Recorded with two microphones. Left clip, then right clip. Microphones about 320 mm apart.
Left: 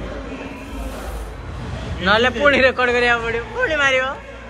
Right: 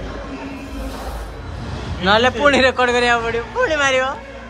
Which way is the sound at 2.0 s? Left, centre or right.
Centre.